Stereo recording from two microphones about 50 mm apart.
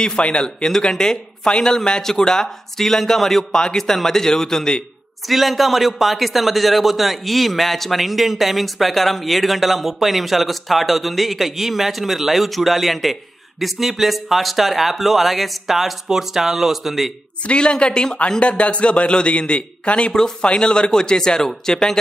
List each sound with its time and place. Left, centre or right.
0.0 s speech: centre
5.3 s a man's voice: centre
17.5 s a man's voice: left